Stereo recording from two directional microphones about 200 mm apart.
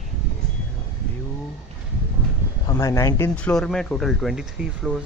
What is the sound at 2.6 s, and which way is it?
Speech, 15° left (ahead or behind).